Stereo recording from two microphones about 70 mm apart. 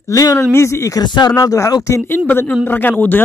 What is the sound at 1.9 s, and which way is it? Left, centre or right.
Speech, left.